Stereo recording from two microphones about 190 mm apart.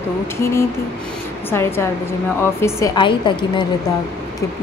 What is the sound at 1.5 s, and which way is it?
A woman's voice, 10° left (ahead or behind).